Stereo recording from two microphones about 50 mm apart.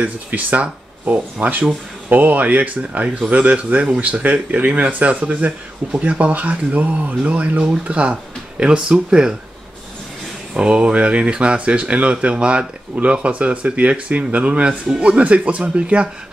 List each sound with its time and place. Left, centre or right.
0.0 s speech: right; by 9.3 s centre
10.5 s speech: centre